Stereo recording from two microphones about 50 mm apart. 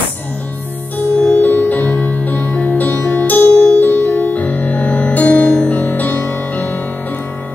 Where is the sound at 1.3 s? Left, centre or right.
Left.